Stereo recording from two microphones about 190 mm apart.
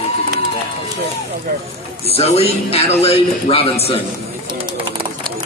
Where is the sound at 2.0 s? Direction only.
30° left (ahead or behind).